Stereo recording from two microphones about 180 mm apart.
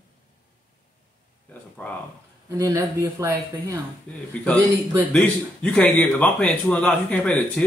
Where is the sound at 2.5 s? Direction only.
20° right (ahead or behind).